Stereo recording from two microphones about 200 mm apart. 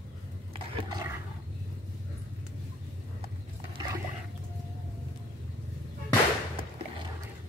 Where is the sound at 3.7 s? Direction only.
20° right (ahead or behind).